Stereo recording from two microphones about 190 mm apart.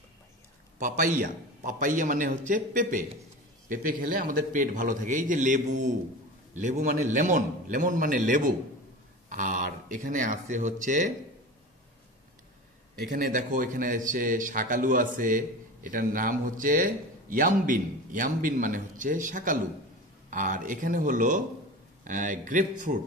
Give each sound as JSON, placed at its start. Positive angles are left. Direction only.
{"t": 0.7, "sound": "a man's voice", "side_deg": -45}
{"t": 13.1, "sound": "a man's voice", "side_deg": -45}